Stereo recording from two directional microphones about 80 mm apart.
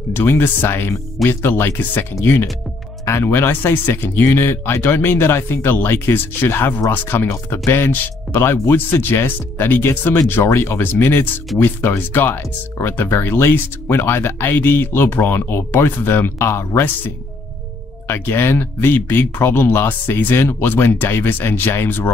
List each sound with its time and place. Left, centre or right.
0.1 s speech: left